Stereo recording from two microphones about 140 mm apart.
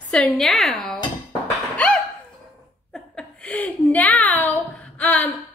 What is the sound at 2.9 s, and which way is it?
A woman's voice, 5° left (ahead or behind).